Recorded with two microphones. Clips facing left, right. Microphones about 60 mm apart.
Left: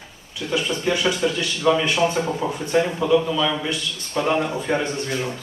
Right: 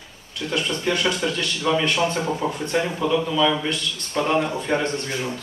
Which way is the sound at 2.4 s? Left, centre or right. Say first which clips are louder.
Right 1 dB; centre.